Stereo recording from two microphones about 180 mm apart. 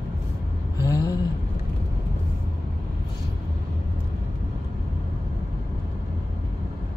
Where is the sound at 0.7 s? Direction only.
20° left (ahead or behind).